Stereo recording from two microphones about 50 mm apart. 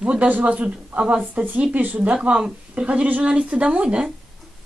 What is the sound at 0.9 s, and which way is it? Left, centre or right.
Speech, right.